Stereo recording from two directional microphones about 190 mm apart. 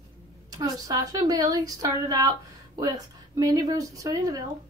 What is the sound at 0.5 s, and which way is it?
A woman's voice, 20° right (ahead or behind).